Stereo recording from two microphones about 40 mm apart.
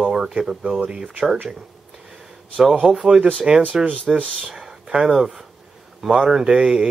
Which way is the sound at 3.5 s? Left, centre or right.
Right.